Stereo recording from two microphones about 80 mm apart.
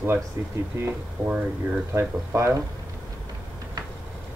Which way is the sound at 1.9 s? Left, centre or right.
Right.